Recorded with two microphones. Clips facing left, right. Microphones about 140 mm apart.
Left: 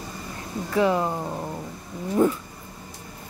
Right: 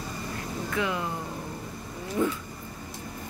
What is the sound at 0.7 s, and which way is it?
Speech, 35° left (ahead or behind).